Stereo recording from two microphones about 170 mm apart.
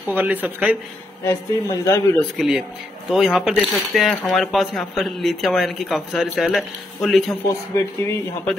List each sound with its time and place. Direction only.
0.1 s speech: 10° right (ahead or behind)
1.2 s speech: 15° left (ahead or behind)
2.3 s speech: 5° right (ahead or behind)
7.7 s speech: 15° left (ahead or behind)